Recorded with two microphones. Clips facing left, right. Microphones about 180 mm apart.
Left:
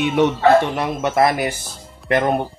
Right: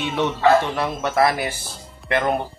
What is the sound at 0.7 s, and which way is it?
Speech, 20° left (ahead or behind).